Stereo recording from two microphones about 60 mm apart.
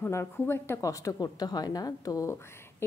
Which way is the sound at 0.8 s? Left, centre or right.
Left.